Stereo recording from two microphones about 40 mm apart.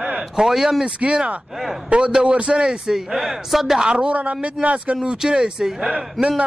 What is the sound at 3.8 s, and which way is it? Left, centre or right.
Speech, centre.